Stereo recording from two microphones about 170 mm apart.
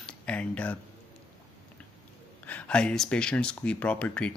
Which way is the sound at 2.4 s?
5° left (ahead or behind).